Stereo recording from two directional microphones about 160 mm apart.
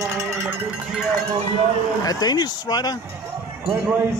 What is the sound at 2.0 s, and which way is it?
Speech, 25° left (ahead or behind).